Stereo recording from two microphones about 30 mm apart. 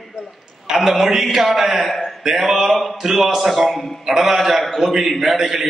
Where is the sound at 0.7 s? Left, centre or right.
Centre.